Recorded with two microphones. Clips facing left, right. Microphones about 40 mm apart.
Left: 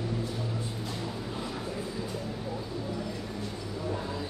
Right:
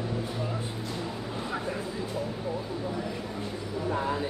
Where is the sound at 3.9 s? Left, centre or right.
Right.